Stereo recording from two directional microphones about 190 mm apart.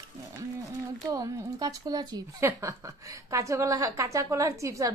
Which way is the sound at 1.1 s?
20° right (ahead or behind).